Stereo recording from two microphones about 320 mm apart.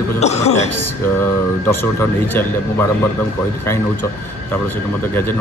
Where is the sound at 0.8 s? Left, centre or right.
Centre.